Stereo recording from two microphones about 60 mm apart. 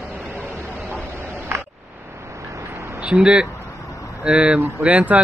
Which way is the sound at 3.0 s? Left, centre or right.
Centre.